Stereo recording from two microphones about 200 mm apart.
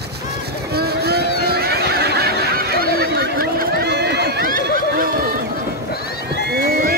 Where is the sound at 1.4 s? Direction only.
50° right (ahead or behind).